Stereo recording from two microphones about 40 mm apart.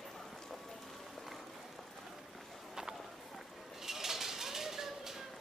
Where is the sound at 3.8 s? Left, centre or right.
Centre.